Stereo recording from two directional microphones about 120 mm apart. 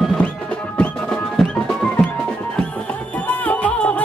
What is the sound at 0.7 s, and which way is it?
Music, 10° left (ahead or behind).